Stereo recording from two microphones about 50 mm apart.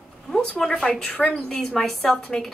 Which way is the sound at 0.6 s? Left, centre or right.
Centre.